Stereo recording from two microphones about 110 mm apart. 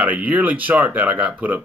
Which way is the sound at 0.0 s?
15° right (ahead or behind).